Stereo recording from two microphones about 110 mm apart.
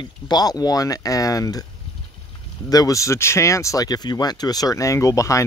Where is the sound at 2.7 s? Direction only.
30° left (ahead or behind).